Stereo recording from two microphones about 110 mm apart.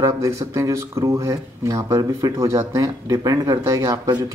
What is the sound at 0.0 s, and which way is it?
Speech, 30° right (ahead or behind).